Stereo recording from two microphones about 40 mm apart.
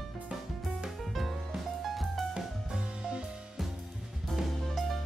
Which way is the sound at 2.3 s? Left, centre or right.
Centre.